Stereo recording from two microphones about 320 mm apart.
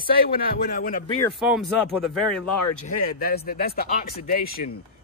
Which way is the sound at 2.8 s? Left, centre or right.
Left.